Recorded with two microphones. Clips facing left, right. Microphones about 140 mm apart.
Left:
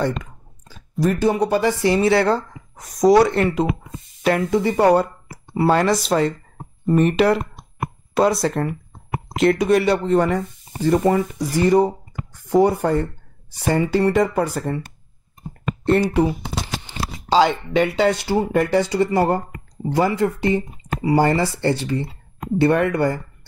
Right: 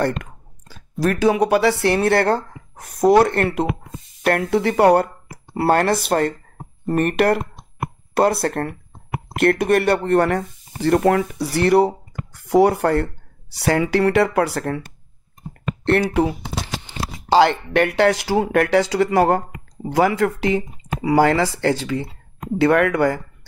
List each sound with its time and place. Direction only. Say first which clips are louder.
0.0 s clicking: right 1 dB; 65° right (ahead or behind)
1.0 s speech: even; centre (ahead or behind)
1.5 s speech: right 1 dB; 80° right
15.8 s speech: even; 80° right
17.3 s speech: right 2 dB; 70° right (ahead or behind); by 23.1 s 90° right